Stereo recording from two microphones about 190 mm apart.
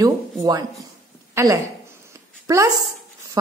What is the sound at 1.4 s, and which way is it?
A woman's voice, 15° right (ahead or behind).